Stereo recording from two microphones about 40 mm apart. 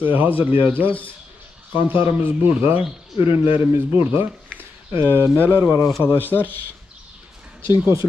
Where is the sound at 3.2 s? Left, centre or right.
Right.